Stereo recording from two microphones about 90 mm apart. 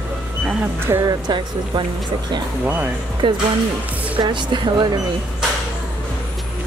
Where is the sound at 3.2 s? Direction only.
65° right (ahead or behind).